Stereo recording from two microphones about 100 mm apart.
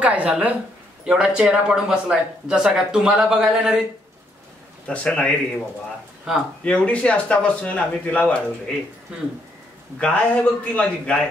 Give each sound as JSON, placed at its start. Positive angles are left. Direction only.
{"t": 0.0, "sound": "speech", "side_deg": -10}
{"t": 4.8, "sound": "speech", "side_deg": 10}
{"t": 6.6, "sound": "speech", "side_deg": 10}
{"t": 9.9, "sound": "speech", "side_deg": 10}